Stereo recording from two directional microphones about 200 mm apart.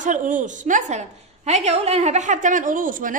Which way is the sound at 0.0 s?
40° right (ahead or behind).